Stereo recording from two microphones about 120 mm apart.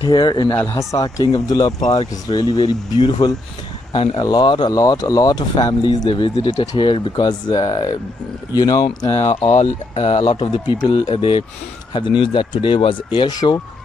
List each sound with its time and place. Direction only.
0.0 s speech: 40° left (ahead or behind)
0.5 s speech: 20° left (ahead or behind)
0.9 s speech: 35° left (ahead or behind)
3.9 s speech: 50° left (ahead or behind)
4.2 s speech: 35° left (ahead or behind)
8.8 s speech: 60° left (ahead or behind); by 13.6 s 40° left (ahead or behind)